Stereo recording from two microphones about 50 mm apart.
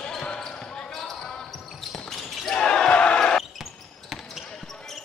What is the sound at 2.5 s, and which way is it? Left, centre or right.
Basketball bounce, centre.